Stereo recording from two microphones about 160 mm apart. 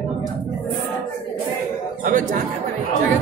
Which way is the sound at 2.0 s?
55° right (ahead or behind).